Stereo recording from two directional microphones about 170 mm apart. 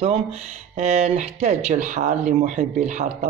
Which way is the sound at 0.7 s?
40° right (ahead or behind).